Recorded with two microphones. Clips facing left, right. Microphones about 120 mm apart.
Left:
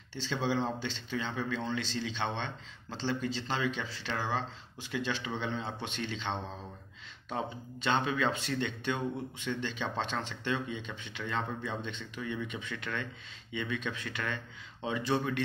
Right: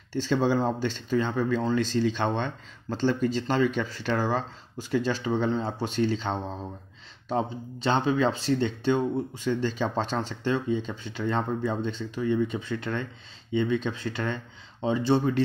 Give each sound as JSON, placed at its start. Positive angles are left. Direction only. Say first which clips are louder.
{"t": 0.1, "sound": "speech", "louder": "right 8 dB", "side_deg": -45}